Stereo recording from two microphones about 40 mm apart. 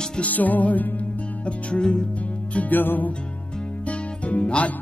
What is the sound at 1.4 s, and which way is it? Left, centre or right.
Music, left.